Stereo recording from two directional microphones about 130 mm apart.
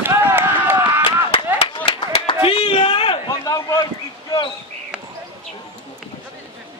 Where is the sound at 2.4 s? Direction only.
45° left (ahead or behind).